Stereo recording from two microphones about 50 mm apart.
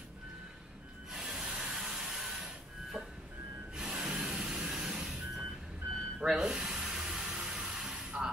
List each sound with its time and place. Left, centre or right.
1.1 s rub: centre
3.7 s music: centre
4.1 s vehicle: centre
6.1 s a sound: centre